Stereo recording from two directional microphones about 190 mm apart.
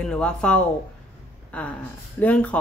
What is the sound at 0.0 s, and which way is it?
Speech, 5° left (ahead or behind).